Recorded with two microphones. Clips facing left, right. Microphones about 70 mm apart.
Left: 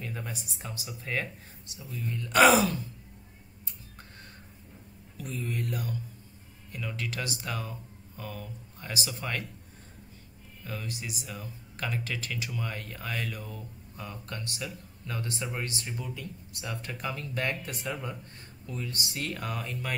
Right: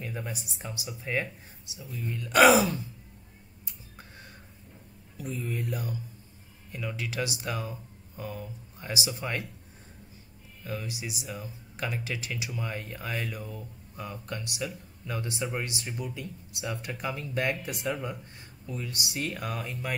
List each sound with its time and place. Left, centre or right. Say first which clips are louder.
0.0 s speech: right 2 dB; centre
5.1 s speech: right 1 dB; centre
10.6 s speech: right 2 dB; centre